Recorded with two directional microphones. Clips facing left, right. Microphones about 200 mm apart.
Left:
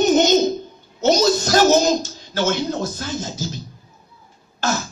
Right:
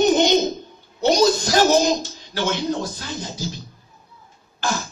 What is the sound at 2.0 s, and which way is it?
Speech, 45° left (ahead or behind).